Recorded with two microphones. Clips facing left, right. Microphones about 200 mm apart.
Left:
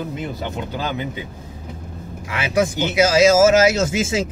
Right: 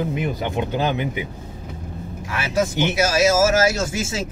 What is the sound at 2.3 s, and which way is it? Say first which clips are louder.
Speech: left 2 dB; 15° left (ahead or behind).